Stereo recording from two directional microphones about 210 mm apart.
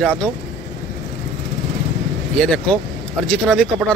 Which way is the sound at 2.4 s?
5° left (ahead or behind).